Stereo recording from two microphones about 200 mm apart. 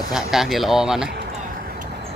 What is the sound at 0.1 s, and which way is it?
Speech, centre (ahead or behind).